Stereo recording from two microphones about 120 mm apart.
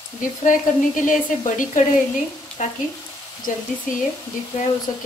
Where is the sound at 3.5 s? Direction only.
90° left.